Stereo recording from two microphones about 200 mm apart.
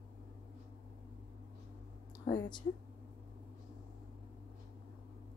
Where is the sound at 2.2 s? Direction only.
20° left (ahead or behind).